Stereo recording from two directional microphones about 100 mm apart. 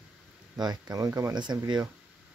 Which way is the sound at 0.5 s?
45° right (ahead or behind).